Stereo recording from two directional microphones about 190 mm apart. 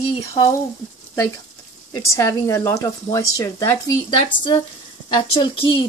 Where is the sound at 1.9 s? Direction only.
15° left (ahead or behind).